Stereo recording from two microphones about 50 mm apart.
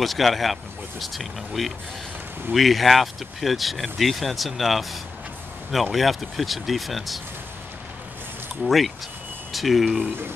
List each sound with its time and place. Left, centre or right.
0.0 s speech: centre
8.6 s speech: centre